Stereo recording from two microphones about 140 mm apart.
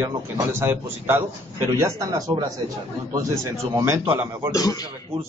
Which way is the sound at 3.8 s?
20° right (ahead or behind).